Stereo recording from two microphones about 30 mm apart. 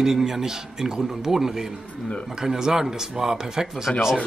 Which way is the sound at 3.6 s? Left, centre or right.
Centre.